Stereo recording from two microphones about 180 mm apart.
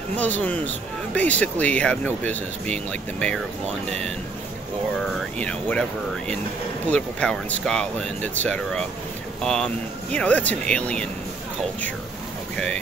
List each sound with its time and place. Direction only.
0.1 s speech: 10° left (ahead or behind)
5.4 s speech: 5° left (ahead or behind)